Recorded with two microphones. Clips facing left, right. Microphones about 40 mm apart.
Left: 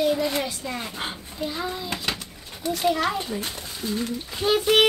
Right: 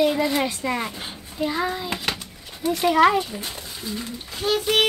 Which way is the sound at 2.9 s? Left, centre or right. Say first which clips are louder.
Right 9 dB; right.